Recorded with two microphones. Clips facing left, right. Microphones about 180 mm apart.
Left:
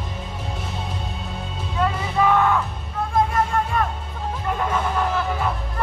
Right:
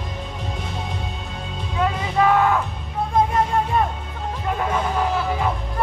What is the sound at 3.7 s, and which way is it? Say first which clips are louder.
Music: right 3 dB; 25° right (ahead or behind).